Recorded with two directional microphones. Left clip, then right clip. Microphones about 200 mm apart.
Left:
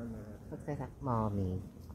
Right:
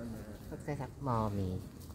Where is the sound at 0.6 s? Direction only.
15° left (ahead or behind).